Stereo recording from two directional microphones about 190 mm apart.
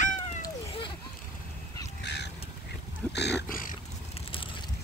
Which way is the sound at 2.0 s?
65° left (ahead or behind).